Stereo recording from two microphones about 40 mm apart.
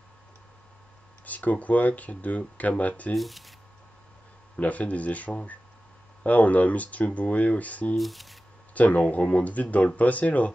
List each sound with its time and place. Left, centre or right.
1.2 s speech: left
3.2 s speech: centre
4.6 s speech: left
8.0 s speech: centre
8.7 s speech: left